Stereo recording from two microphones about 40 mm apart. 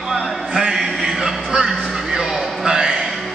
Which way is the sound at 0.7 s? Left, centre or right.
Centre.